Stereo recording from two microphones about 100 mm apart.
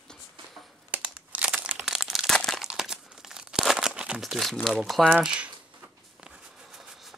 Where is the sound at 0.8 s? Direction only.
15° right (ahead or behind); by 2.6 s 5° left (ahead or behind).